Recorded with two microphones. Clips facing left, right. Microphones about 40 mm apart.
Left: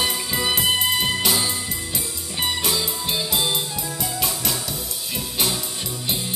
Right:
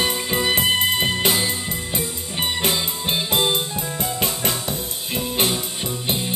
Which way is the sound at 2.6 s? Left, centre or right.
Right.